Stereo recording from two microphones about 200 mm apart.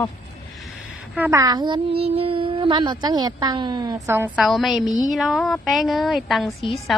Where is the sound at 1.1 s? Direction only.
10° right (ahead or behind).